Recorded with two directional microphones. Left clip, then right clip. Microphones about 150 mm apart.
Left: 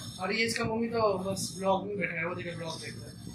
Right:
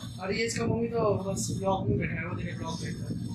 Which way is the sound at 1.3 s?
45° left (ahead or behind).